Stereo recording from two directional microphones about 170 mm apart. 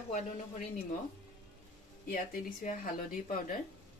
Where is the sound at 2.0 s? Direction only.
55° left (ahead or behind).